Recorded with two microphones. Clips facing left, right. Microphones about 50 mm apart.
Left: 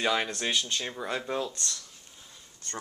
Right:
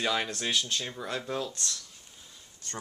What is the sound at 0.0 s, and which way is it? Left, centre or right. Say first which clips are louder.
Speech: left 2 dB; centre.